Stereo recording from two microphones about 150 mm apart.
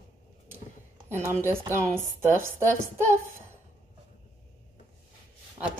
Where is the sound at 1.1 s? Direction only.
15° right (ahead or behind).